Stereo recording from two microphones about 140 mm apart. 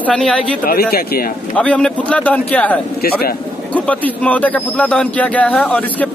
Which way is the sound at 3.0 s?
90° left.